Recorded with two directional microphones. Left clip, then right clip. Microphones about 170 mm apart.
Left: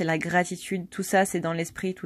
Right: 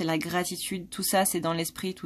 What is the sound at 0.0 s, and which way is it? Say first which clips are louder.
Speech: left 4 dB; 20° left (ahead or behind).